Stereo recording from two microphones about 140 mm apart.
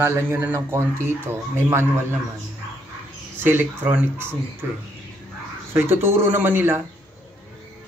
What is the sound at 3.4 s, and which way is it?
Speech, 15° right (ahead or behind).